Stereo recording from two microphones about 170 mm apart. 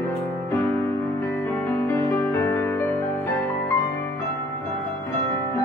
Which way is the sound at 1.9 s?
15° left (ahead or behind).